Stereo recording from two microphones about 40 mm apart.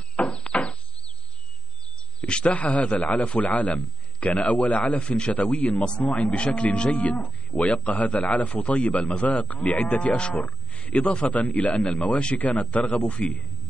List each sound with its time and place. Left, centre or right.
0.2 s a sound: left
2.2 s speech: left
2.5 s livestock: left
5.0 s speech: left
5.3 s a man's voice: left
6.0 s livestock: left
10.3 s livestock: left
11.2 s a man's voice: left